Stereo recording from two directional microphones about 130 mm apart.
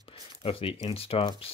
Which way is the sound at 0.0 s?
45° left (ahead or behind).